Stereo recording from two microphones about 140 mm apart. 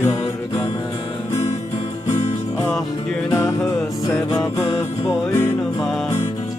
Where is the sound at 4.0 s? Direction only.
25° left (ahead or behind).